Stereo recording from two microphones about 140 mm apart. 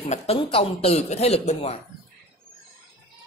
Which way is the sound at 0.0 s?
45° left (ahead or behind).